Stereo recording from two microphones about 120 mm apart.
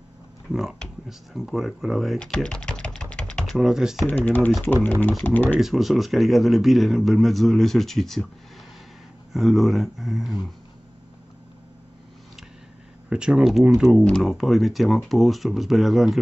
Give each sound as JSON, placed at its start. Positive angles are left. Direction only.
{"t": 0.5, "sound": "speech", "side_deg": 0}
{"t": 4.1, "sound": "speech", "side_deg": 15}
{"t": 5.6, "sound": "speech", "side_deg": 0}
{"t": 9.3, "sound": "speech", "side_deg": 0}
{"t": 13.1, "sound": "speech", "side_deg": -5}